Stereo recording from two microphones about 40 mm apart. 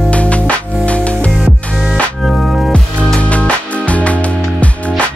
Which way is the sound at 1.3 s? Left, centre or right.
Right.